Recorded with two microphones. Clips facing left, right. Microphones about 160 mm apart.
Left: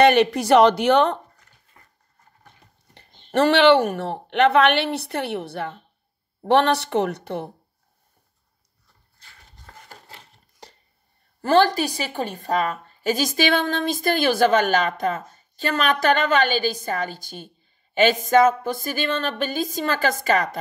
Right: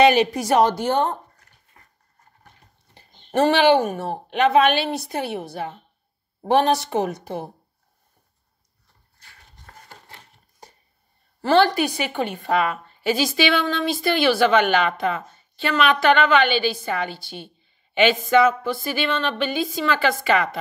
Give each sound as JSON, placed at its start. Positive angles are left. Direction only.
{"t": 0.0, "sound": "speech", "side_deg": 60}
{"t": 3.3, "sound": "a woman's voice", "side_deg": 65}
{"t": 10.6, "sound": "a sound", "side_deg": 75}
{"t": 11.4, "sound": "a woman's voice", "side_deg": 40}